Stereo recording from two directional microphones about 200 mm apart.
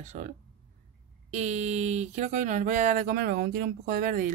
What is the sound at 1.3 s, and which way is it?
Speech, 35° right (ahead or behind).